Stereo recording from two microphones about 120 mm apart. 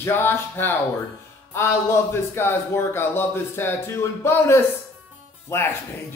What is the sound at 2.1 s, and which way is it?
Speech, 20° left (ahead or behind).